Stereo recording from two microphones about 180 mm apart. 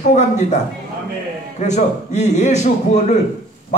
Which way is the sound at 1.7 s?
40° left (ahead or behind).